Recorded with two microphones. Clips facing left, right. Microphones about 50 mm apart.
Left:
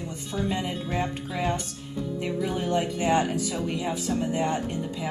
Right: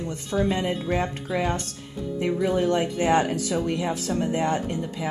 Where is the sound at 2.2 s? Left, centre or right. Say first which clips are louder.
Right 7 dB; right.